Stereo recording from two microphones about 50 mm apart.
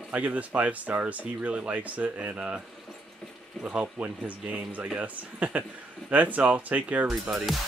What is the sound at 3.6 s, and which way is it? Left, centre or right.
Speech, right.